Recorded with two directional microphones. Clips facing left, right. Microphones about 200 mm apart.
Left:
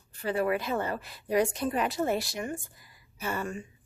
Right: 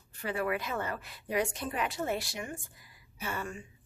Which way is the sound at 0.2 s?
30° left (ahead or behind).